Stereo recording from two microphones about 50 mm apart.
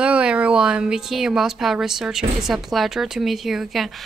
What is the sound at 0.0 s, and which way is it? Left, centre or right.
Speech, right.